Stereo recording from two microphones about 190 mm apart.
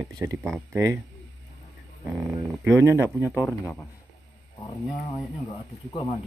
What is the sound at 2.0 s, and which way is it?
Speech, 5° right (ahead or behind).